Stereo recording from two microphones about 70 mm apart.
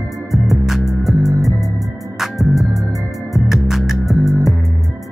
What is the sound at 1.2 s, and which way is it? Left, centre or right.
Music, right.